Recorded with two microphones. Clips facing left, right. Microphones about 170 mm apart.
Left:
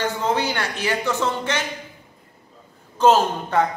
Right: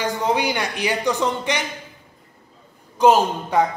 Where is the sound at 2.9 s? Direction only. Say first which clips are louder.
Right 1 dB; 10° right (ahead or behind).